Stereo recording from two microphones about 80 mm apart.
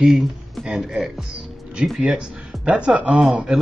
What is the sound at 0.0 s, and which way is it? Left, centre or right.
Speech, centre.